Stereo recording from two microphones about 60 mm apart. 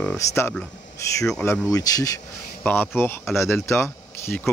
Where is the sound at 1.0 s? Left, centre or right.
Left.